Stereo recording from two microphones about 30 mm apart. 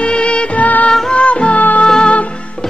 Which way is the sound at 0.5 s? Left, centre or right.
Left.